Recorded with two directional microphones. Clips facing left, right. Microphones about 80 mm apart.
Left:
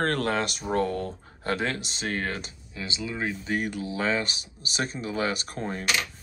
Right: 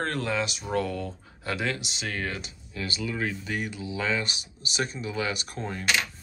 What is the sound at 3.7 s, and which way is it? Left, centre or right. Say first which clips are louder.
Speech: left 2 dB; left.